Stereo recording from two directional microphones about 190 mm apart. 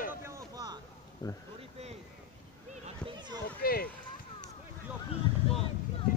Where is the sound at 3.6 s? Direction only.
50° left (ahead or behind).